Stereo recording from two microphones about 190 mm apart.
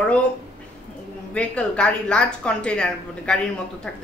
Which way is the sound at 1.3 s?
5° left (ahead or behind).